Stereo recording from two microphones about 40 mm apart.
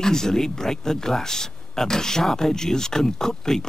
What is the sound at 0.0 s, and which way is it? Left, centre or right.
Speech, centre.